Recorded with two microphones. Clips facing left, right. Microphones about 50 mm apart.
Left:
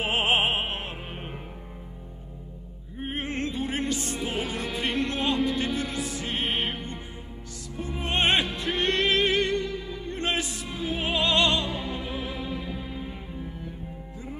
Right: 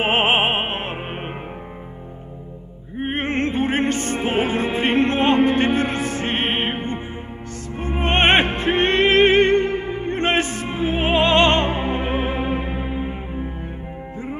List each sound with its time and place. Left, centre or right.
0.0 s music: right
3.0 s music: right
7.7 s opera: right